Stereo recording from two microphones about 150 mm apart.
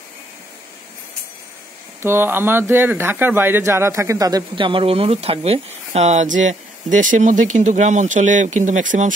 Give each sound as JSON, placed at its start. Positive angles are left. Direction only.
{"t": 2.0, "sound": "speech", "side_deg": -15}